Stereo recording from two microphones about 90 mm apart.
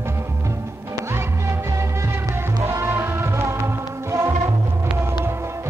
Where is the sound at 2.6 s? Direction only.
30° right (ahead or behind).